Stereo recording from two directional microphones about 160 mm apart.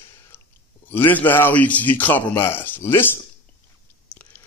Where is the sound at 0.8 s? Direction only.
10° left (ahead or behind).